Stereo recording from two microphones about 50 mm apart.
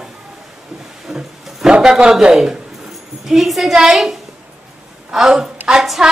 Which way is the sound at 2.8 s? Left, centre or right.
Centre.